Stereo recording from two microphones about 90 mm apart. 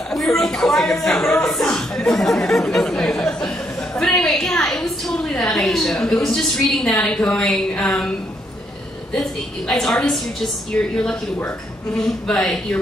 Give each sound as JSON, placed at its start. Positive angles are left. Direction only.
{"t": 0.1, "sound": "music", "side_deg": 5}
{"t": 4.0, "sound": "a sound", "side_deg": 5}
{"t": 9.1, "sound": "a woman's voice", "side_deg": 5}
{"t": 12.0, "sound": "speech", "side_deg": 5}